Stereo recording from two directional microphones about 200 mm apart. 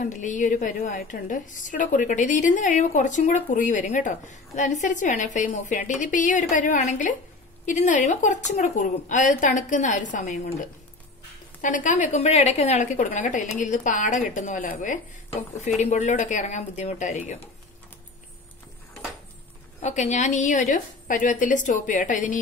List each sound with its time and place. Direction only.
0.0 s a woman's voice: 40° left (ahead or behind)
19.8 s a woman's voice: 35° left (ahead or behind)